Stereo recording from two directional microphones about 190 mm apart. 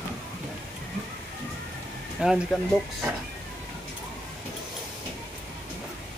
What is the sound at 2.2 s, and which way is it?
Speech, 5° right (ahead or behind).